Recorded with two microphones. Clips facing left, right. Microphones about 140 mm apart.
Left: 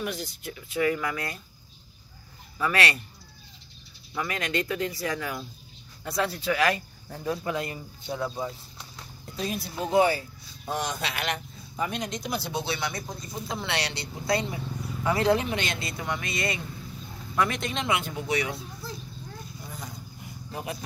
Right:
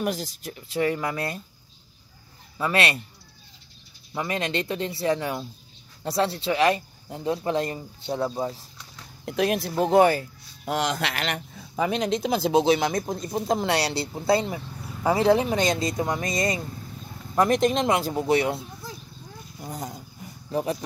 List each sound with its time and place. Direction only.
0.0 s speech: 40° right (ahead or behind)
2.6 s speech: 25° right (ahead or behind)
4.1 s speech: 25° right (ahead or behind)
9.2 s speech: 70° right (ahead or behind); by 10.2 s 55° right (ahead or behind)
10.6 s speech: 85° right
12.4 s speech: 90° right
12.7 s speech: 45° right (ahead or behind)
19.6 s dog: 40° right (ahead or behind)